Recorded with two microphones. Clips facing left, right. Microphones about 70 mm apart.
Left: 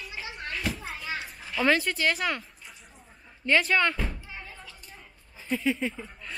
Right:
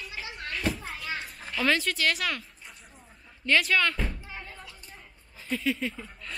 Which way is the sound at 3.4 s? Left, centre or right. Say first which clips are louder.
Left 1 dB; left.